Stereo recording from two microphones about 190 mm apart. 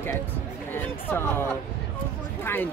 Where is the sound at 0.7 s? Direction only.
10° left (ahead or behind).